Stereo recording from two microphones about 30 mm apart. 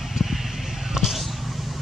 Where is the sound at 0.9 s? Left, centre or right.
Centre.